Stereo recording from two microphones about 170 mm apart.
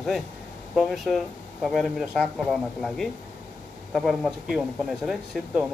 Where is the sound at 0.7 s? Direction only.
Centre (ahead or behind).